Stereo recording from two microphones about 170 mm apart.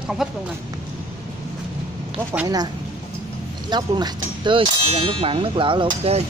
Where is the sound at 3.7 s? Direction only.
25° right (ahead or behind).